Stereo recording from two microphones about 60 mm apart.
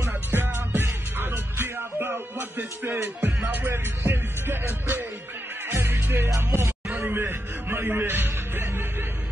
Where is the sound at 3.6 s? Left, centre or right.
Right.